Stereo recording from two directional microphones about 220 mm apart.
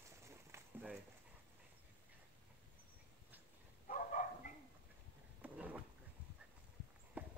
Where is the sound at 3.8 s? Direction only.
35° left (ahead or behind).